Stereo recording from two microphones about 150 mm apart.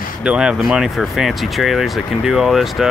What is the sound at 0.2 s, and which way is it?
Speech, 5° right (ahead or behind).